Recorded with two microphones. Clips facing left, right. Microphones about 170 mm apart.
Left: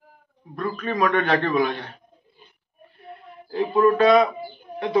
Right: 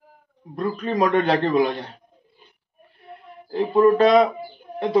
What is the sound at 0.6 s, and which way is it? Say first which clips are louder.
A man's voice: right 2 dB; 25° right (ahead or behind).